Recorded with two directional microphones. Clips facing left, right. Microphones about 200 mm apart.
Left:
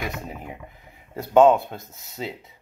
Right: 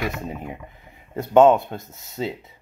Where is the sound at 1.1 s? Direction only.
Centre (ahead or behind).